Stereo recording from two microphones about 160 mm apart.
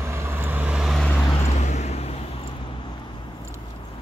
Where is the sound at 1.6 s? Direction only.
45° left (ahead or behind).